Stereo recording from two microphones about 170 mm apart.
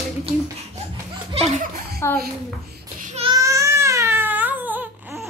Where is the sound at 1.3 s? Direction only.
40° right (ahead or behind).